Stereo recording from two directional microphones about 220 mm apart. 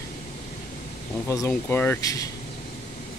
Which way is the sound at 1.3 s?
10° left (ahead or behind).